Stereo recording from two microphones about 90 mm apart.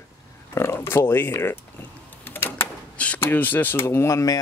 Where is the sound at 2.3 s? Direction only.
25° left (ahead or behind).